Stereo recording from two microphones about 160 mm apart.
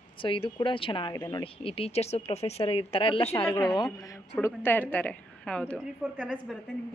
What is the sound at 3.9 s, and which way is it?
A woman's voice, 20° left (ahead or behind).